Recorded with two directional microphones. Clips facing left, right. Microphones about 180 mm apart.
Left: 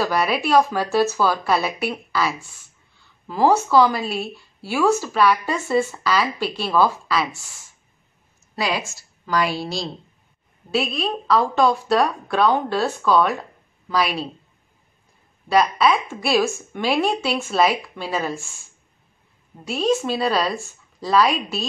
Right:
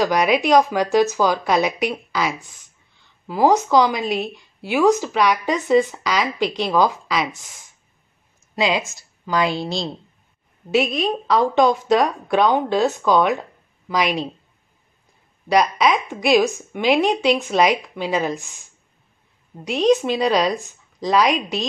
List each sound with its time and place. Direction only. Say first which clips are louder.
0.0 s speech: right 3 dB; 15° right (ahead or behind)
8.5 s a woman's voice: right 4 dB; 20° right (ahead or behind)
11.1 s speech: right 1 dB; 20° right (ahead or behind)
15.8 s speech: right 1 dB; 15° right (ahead or behind)
19.6 s speech: right 4 dB; 20° right (ahead or behind)